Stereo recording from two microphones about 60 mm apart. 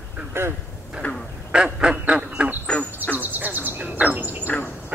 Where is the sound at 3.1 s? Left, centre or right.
Right.